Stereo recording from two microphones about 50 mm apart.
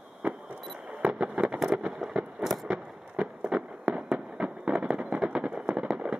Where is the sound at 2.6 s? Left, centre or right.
Centre.